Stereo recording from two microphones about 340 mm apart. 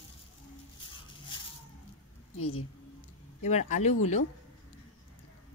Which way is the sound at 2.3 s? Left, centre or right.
Left.